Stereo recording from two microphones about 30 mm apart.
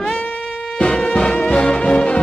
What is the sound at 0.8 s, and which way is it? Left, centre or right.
Music, left.